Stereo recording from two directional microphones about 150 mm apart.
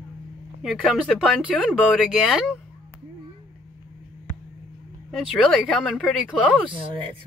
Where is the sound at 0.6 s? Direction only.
Centre (ahead or behind).